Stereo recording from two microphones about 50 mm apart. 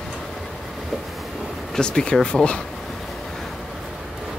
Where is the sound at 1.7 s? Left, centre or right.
Centre.